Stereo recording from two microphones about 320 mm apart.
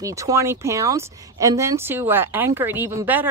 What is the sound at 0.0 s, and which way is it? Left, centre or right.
Speech, centre.